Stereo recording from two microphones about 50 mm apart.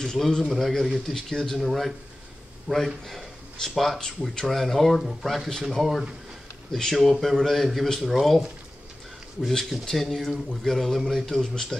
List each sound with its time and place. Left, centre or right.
0.4 s speech: centre
2.7 s a man's voice: right
3.1 s speech: centre
9.5 s speech: centre